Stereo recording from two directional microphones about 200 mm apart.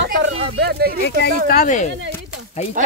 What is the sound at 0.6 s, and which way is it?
Speech, 55° right (ahead or behind).